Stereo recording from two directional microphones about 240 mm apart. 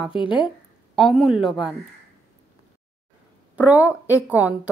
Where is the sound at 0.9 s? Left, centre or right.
Centre.